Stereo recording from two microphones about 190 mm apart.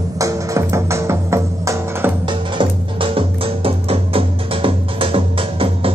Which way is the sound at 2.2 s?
25° right (ahead or behind).